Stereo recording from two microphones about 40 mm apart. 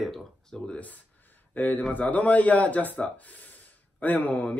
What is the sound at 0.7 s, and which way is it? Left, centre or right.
A man's voice, left.